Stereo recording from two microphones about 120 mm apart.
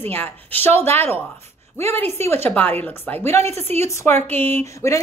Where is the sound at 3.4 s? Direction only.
60° right (ahead or behind).